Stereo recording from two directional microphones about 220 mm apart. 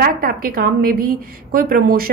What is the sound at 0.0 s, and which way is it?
A woman's voice, 40° right (ahead or behind).